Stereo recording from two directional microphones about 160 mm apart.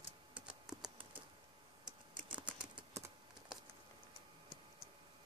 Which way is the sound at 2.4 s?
5° right (ahead or behind).